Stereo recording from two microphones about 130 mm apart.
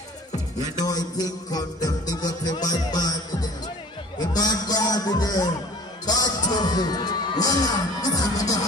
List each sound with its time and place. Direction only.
0.6 s music: 30° left (ahead or behind)
4.2 s speech: 30° left (ahead or behind)